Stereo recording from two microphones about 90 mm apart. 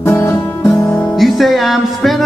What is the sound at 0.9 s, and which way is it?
Music, centre (ahead or behind).